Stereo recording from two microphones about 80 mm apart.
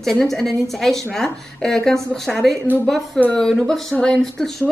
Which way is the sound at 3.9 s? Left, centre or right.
Centre.